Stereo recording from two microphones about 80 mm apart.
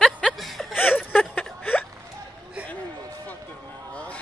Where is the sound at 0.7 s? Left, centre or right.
Left.